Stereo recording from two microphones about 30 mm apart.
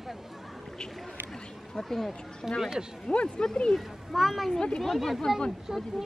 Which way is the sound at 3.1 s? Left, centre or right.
Left.